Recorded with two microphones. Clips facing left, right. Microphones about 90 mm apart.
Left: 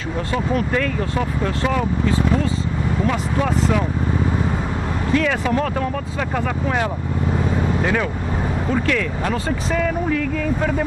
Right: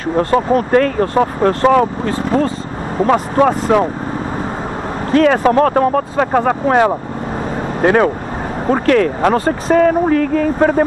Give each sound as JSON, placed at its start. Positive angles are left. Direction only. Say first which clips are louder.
{"t": 0.1, "sound": "speech", "louder": "right 9 dB", "side_deg": -45}
{"t": 5.1, "sound": "speech", "louder": "right 9 dB", "side_deg": -50}